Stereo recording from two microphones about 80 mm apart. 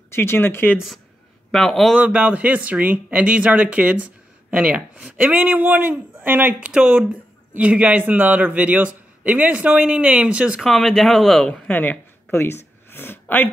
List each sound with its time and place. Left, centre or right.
0.1 s speech: left
0.7 s speech: centre
2.0 s speech: centre
10.6 s speech: centre
11.7 s a sound: left